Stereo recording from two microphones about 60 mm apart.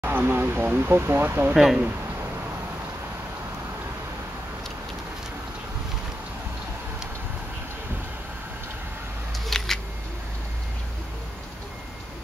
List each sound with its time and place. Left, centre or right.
0.0 s speech: right
1.5 s speech: centre
9.5 s a sound: centre